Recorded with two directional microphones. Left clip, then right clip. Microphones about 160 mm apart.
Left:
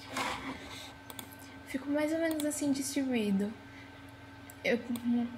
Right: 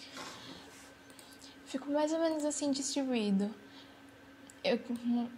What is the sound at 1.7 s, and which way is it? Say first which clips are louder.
Speech: even; 30° right (ahead or behind).